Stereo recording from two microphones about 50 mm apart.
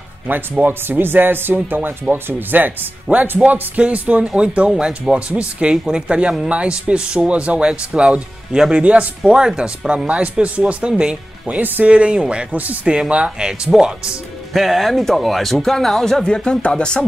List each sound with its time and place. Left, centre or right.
0.3 s speech: right; by 8.8 s centre
8.8 s speech: right
9.3 s speech: centre
11.4 s speech: right
11.9 s speech: right
14.5 s speech: centre